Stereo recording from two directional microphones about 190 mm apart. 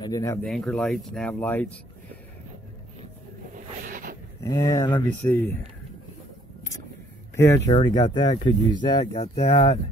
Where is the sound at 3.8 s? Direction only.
45° right (ahead or behind).